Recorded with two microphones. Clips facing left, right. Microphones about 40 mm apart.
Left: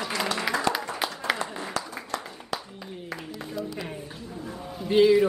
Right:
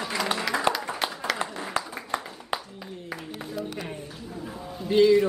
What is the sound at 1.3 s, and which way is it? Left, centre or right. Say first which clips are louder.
Applause: right 2 dB; right.